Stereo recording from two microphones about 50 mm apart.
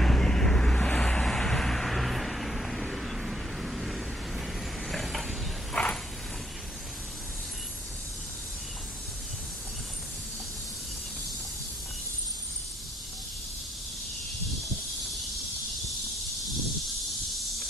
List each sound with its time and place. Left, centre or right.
0.0 s vehicle: centre
5.8 s horse: left
14.6 s a sound: centre
16.8 s snake: centre